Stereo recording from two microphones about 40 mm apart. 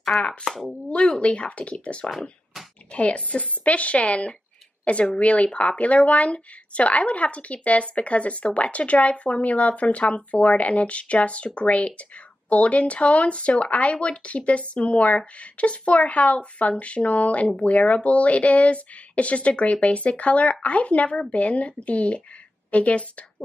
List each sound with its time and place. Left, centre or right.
0.2 s speech: left